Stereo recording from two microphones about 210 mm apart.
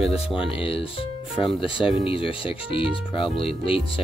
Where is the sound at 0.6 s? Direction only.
25° left (ahead or behind).